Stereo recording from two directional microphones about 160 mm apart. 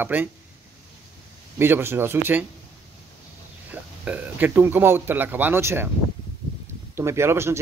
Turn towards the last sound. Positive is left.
turn(degrees=-15)  # may be behind; listen again after turning